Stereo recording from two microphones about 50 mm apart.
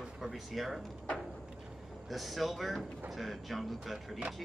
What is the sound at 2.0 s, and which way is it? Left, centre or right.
Speech, centre.